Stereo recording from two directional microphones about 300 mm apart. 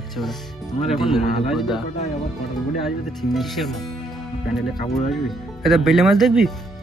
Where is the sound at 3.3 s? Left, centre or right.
Centre.